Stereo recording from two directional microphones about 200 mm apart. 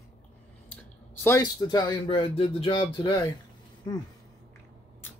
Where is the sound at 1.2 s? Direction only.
15° left (ahead or behind).